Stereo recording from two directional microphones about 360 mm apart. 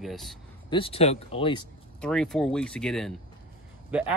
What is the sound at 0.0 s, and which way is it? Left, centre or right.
Speech, centre.